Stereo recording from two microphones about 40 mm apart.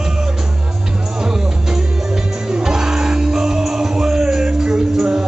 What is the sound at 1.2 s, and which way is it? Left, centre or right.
Music, centre.